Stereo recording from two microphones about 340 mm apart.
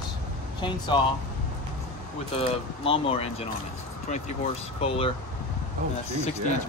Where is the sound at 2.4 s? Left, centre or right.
Centre.